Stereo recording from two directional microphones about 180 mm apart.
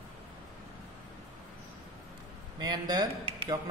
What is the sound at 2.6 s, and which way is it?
Speech, 25° right (ahead or behind).